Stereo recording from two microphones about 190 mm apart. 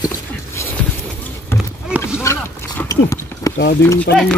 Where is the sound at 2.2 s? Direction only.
15° left (ahead or behind).